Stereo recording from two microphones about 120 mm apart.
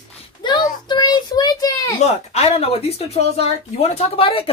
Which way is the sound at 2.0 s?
60° left (ahead or behind).